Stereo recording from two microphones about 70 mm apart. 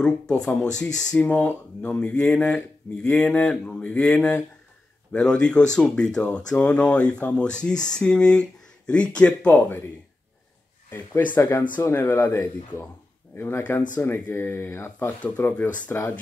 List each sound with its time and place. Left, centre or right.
0.0 s speech: centre
10.9 s speech: left
13.4 s speech: left
15.3 s speech: left